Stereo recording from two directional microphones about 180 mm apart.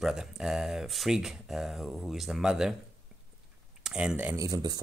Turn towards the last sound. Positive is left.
turn(degrees=-20)  # may be behind; listen again after turning